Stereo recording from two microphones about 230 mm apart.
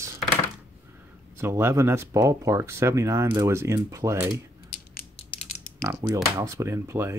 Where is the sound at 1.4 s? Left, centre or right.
Centre.